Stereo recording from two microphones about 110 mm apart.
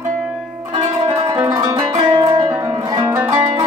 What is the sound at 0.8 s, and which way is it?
Music, 40° right (ahead or behind).